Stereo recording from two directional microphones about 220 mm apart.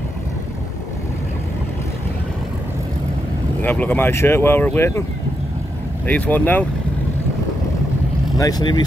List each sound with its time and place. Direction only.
3.6 s speech: 10° left (ahead or behind)
6.0 s speech: 5° left (ahead or behind)
8.4 s speech: 15° left (ahead or behind)